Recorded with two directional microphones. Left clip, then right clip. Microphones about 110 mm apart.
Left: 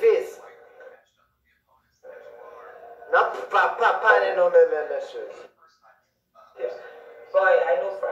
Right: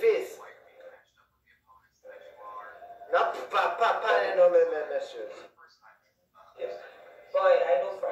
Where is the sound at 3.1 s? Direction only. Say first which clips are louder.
Left 6 dB; 40° left (ahead or behind).